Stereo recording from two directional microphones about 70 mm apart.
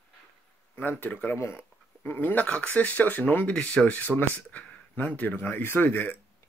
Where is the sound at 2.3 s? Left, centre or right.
Left.